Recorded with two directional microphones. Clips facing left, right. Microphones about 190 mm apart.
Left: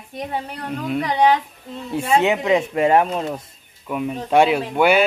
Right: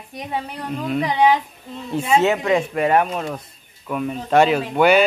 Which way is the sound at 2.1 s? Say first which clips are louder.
Even; 15° left (ahead or behind).